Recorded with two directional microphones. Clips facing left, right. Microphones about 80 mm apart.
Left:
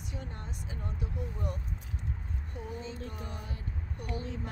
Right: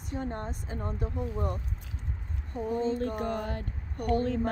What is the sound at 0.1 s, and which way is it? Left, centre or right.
A woman's voice, right.